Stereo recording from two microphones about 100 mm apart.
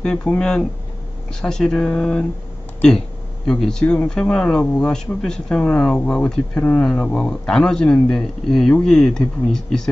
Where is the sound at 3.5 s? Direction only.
5° left (ahead or behind).